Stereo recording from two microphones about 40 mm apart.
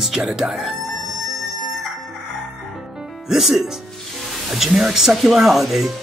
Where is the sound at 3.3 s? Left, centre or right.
Centre.